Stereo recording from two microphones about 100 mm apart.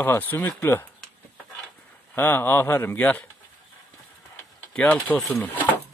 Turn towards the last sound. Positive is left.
turn(degrees=15)  # may be behind; listen again after turning